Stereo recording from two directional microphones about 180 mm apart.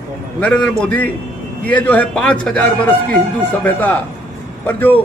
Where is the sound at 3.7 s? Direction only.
10° left (ahead or behind).